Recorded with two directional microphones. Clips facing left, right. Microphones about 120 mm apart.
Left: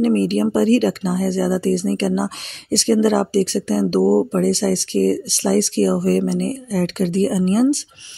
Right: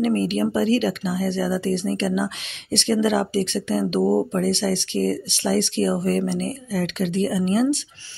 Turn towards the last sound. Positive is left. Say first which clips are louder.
# left 4 dB
turn(degrees=35)  # may be behind; listen again after turning